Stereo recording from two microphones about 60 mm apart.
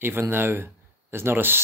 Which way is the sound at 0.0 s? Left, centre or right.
Right.